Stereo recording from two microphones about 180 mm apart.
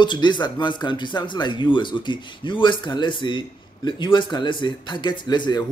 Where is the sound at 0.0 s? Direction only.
25° left (ahead or behind).